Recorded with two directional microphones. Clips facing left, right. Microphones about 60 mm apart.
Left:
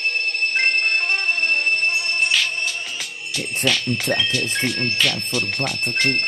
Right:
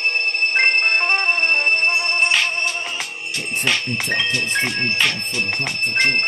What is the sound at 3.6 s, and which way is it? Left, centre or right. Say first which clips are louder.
Speech: left 1 dB; right.